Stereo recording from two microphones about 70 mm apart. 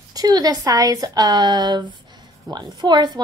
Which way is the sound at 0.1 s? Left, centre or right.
Right.